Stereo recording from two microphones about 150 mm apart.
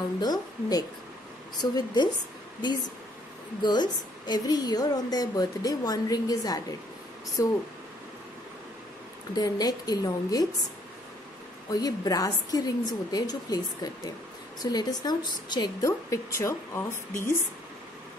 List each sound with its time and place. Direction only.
0.2 s a woman's voice: 25° left (ahead or behind)
3.6 s a woman's voice: 30° left (ahead or behind)
9.4 s a woman's voice: 25° left (ahead or behind)
11.7 s a woman's voice: 25° left (ahead or behind)